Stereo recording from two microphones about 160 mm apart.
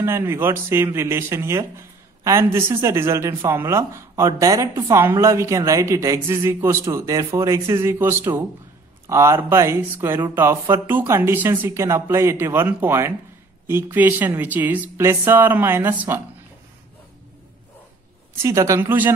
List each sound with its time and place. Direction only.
0.0 s speech: 15° right (ahead or behind)
18.4 s speech: 20° right (ahead or behind)